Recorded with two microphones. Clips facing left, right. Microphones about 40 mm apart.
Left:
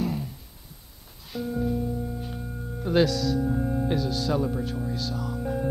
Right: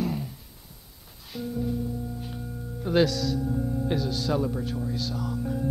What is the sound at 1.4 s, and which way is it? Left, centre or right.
Music, centre.